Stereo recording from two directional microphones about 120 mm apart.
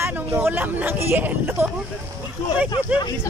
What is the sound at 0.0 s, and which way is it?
Speech, 20° right (ahead or behind).